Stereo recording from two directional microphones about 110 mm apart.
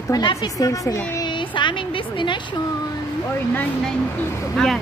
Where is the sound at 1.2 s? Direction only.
45° left (ahead or behind).